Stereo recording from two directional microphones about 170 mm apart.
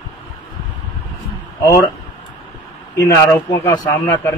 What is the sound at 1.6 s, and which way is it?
Speech, 15° left (ahead or behind).